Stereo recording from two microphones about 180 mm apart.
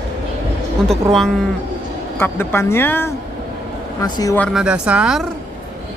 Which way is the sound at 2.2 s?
15° left (ahead or behind).